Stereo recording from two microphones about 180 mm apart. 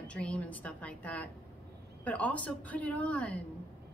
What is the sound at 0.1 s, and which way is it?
A woman's voice, 5° left (ahead or behind).